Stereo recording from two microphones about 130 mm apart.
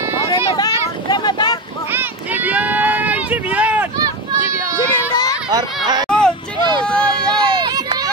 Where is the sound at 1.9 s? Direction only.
15° right (ahead or behind).